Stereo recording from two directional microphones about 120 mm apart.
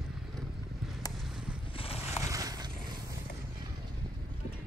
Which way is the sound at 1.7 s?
55° left (ahead or behind).